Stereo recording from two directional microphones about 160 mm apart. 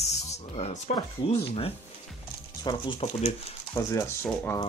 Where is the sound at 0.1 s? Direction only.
45° left (ahead or behind).